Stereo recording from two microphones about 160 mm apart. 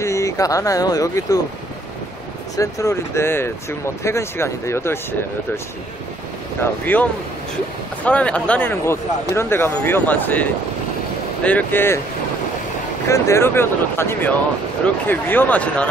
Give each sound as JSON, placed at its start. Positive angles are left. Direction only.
{"t": 0.0, "sound": "speech", "side_deg": 20}
{"t": 2.5, "sound": "speech", "side_deg": 20}
{"t": 6.6, "sound": "speech", "side_deg": 10}
{"t": 13.1, "sound": "speech", "side_deg": 15}